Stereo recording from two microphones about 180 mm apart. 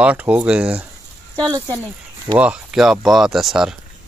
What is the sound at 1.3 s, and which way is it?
Speech, 20° right (ahead or behind).